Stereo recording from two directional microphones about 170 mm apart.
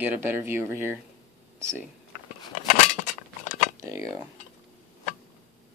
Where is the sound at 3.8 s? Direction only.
20° right (ahead or behind).